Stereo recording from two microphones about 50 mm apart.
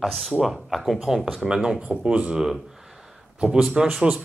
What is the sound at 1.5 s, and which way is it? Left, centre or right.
Speech, centre.